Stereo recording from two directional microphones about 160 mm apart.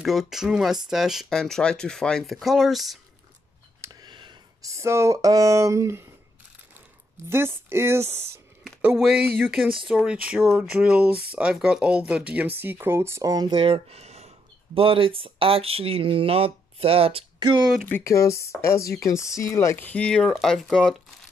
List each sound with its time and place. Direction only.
0.0 s speech: centre (ahead or behind)
3.8 s speech: 25° right (ahead or behind)
7.2 s speech: 15° right (ahead or behind)
8.8 s speech: centre (ahead or behind); by 17.6 s 35° right (ahead or behind)
17.7 s speech: 10° left (ahead or behind)